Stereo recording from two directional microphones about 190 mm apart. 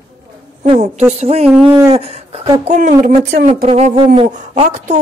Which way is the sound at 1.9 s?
30° right (ahead or behind).